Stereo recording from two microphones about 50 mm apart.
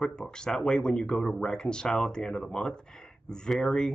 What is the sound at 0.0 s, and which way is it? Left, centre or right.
Speech, centre.